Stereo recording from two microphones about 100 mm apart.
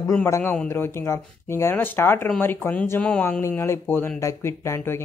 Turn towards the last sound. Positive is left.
turn(degrees=30)  # may be behind; listen again after turning